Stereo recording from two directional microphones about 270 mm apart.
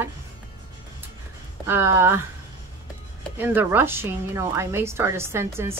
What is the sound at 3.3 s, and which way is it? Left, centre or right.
Speech, centre.